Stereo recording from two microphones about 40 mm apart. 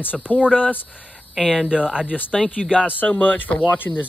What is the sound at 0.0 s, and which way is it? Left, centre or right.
Speech, left.